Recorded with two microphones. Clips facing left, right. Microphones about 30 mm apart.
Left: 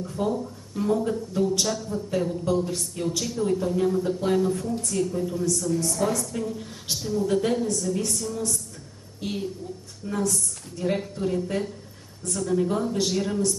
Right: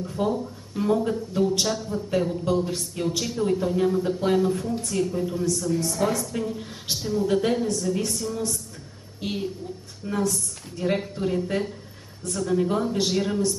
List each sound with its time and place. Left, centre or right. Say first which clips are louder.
0.0 s speech: right 1 dB; centre